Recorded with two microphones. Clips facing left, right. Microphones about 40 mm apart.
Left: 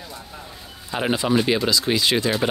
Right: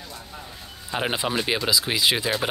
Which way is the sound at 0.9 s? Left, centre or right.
Centre.